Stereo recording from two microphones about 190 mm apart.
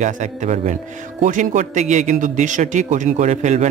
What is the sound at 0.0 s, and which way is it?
A man's voice, 40° right (ahead or behind).